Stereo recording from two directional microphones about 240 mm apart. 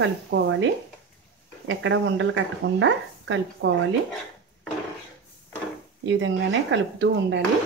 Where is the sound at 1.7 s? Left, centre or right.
Right.